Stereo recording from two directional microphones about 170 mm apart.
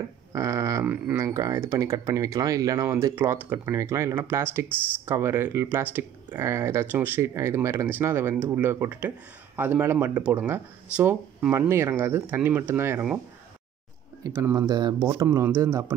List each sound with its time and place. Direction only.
0.3 s speech: 20° right (ahead or behind)
14.2 s speech: 15° right (ahead or behind)